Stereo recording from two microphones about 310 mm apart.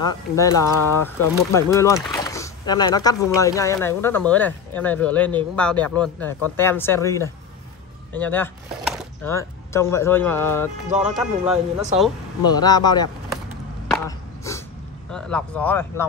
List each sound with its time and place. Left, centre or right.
0.0 s speech: centre
12.4 s speech: centre
14.0 s chopping: centre
15.0 s speech: centre